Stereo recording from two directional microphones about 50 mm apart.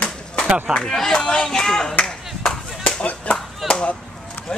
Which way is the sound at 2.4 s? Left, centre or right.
Centre.